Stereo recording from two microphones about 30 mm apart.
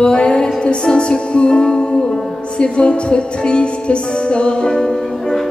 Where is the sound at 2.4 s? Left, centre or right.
Left.